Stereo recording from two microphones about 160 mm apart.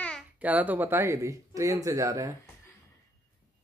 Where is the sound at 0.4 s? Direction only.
10° right (ahead or behind).